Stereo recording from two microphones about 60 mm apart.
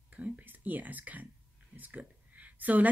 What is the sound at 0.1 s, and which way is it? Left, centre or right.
A woman's voice, right.